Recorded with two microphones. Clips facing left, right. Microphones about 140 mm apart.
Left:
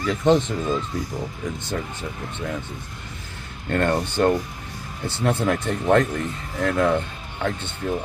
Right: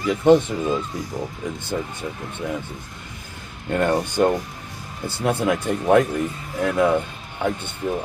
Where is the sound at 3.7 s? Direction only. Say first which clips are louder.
Right 1 dB; 10° right (ahead or behind).